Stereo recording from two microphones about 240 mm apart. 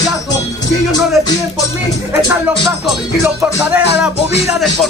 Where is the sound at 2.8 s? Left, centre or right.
Centre.